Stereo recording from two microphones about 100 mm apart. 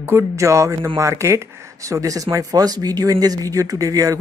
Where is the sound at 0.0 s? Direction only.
25° right (ahead or behind).